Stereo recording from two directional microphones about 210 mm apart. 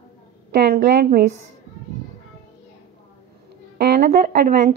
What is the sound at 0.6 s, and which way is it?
Speech, 50° right (ahead or behind).